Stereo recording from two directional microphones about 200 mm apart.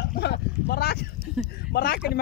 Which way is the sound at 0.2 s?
55° left (ahead or behind).